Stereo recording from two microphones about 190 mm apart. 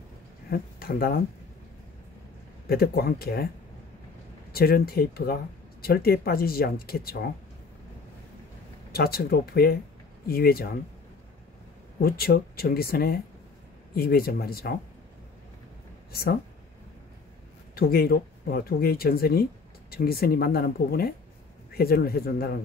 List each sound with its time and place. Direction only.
0.5 s speech: 50° left (ahead or behind)
2.7 s speech: 55° left (ahead or behind)
4.5 s speech: 55° left (ahead or behind)
8.9 s speech: 55° left (ahead or behind)
12.0 s speech: 55° left (ahead or behind)
16.1 s speech: 55° left (ahead or behind)
17.7 s speech: 55° left (ahead or behind)